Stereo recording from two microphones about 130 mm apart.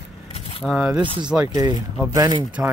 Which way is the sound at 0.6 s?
5° right (ahead or behind).